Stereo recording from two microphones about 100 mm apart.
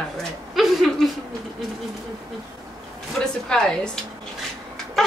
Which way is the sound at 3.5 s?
5° left (ahead or behind).